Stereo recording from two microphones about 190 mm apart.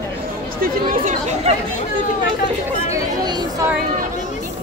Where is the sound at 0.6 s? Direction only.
45° right (ahead or behind).